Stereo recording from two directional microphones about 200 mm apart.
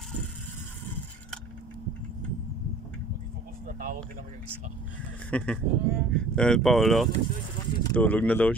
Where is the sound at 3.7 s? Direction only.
45° right (ahead or behind).